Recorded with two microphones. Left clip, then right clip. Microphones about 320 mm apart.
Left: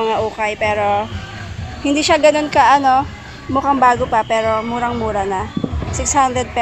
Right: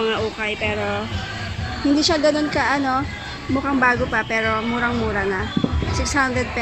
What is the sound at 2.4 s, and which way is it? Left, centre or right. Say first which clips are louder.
A woman's voice: left 8 dB; left.